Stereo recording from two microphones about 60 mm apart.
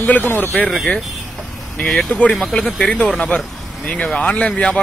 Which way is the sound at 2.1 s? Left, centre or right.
Centre.